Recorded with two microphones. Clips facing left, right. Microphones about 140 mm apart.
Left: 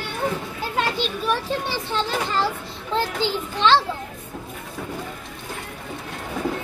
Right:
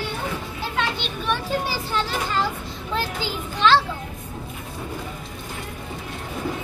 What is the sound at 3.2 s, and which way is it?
Speech, centre (ahead or behind).